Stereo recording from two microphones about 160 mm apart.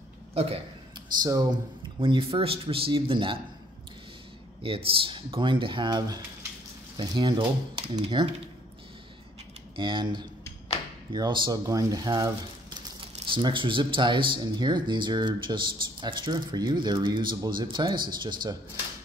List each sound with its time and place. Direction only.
0.3 s a man's voice: 40° right (ahead or behind)
1.2 s speech: 25° right (ahead or behind)
4.6 s speech: 35° right (ahead or behind)
9.8 s speech: 30° right (ahead or behind)